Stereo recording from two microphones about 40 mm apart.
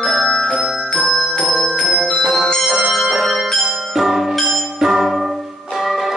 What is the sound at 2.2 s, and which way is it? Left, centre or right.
Music, centre.